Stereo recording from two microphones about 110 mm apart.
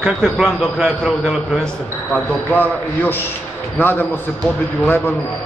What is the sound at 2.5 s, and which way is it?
Speech, 15° left (ahead or behind).